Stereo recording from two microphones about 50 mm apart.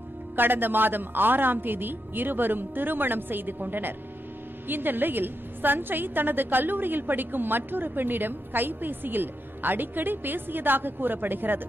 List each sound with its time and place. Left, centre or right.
0.4 s a woman's voice: right